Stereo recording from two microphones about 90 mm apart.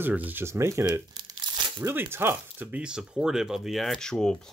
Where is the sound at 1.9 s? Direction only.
25° right (ahead or behind).